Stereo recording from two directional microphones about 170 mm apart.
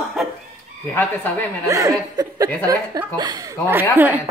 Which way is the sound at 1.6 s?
20° right (ahead or behind).